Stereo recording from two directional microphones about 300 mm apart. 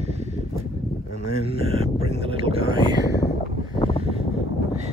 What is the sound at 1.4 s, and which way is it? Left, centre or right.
Speech, centre.